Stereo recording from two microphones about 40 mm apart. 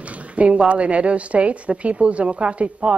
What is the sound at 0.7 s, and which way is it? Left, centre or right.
A woman's voice, right.